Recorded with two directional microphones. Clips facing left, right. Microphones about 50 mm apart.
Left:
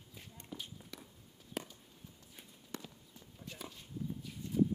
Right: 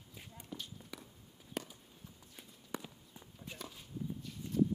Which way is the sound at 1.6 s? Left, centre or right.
Centre.